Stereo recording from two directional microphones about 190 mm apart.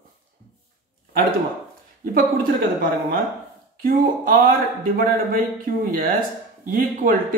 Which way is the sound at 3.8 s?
50° right (ahead or behind).